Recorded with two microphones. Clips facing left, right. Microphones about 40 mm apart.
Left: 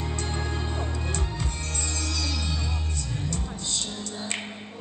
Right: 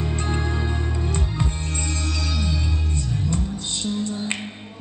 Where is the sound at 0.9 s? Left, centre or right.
Right.